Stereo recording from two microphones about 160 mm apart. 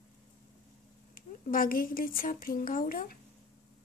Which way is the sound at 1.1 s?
60° left (ahead or behind).